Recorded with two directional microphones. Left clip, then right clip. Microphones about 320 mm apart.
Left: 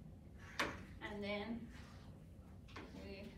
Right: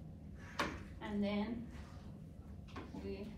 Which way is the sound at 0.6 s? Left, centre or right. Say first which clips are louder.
Right 1 dB; centre.